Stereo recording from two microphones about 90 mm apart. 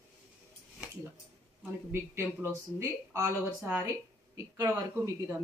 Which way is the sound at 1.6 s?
25° right (ahead or behind).